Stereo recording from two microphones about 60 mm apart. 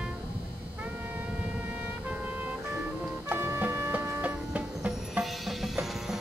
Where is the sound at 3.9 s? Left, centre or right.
Right.